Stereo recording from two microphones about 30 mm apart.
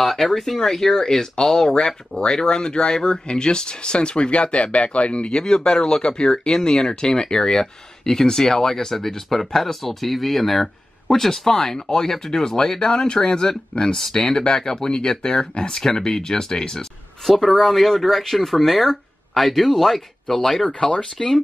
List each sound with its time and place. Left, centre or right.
0.0 s speech: centre; by 5.3 s left
5.3 s speech: left
20.9 s speech: left